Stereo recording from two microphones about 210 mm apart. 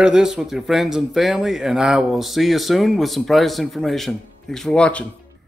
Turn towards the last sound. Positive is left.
turn(degrees=5)  # may be behind; listen again after turning